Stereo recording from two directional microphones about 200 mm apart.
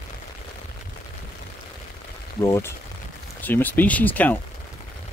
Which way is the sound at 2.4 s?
15° left (ahead or behind).